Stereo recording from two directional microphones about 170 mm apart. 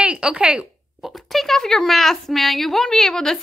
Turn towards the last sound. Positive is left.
turn(degrees=5)  # may be behind; listen again after turning